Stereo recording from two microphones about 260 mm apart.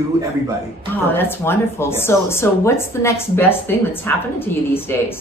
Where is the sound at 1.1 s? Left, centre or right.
Centre.